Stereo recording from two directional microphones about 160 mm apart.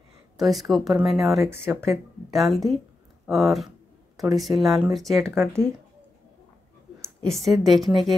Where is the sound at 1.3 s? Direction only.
15° right (ahead or behind).